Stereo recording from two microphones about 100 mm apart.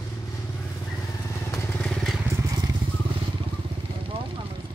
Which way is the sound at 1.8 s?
Centre (ahead or behind).